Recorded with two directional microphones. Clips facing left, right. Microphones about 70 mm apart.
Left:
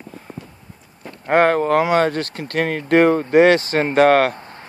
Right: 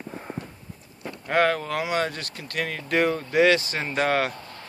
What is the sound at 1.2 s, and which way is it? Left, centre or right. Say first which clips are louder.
Speech: left 7 dB; left.